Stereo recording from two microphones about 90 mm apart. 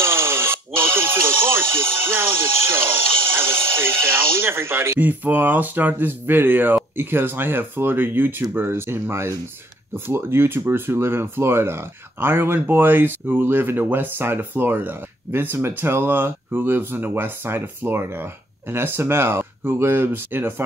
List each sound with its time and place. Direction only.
0.0 s music: 30° right (ahead or behind)
6.7 s speech: 25° right (ahead or behind)